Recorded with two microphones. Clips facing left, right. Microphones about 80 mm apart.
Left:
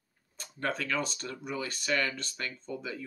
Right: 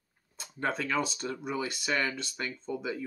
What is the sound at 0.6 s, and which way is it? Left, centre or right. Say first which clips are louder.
Speech: right 2 dB; centre.